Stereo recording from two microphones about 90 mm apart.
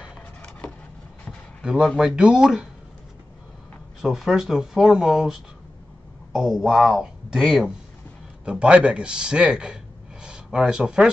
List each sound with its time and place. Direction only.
0.4 s a sound: 15° left (ahead or behind)
1.6 s speech: 10° right (ahead or behind)
4.0 s speech: 5° right (ahead or behind)
8.5 s speech: 10° right (ahead or behind)